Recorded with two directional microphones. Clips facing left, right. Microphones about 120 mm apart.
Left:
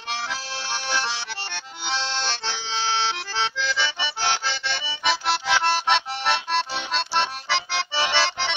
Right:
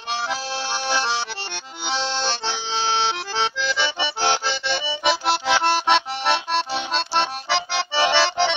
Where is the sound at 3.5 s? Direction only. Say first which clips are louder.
Right 3 dB; 15° right (ahead or behind).